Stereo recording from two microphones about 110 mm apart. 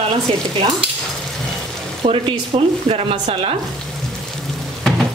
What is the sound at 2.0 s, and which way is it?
Speech, 60° right (ahead or behind).